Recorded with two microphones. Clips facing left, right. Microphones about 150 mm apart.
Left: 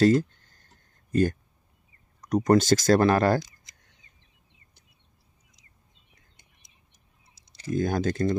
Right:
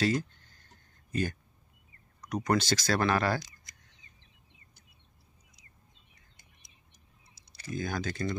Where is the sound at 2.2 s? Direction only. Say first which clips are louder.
Left 8 dB; 40° left (ahead or behind).